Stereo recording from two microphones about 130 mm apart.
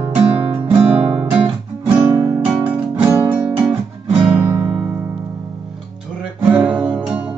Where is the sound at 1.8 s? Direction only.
15° right (ahead or behind).